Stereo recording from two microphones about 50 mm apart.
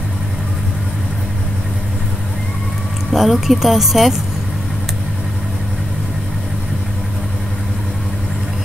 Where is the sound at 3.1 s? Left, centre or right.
Centre.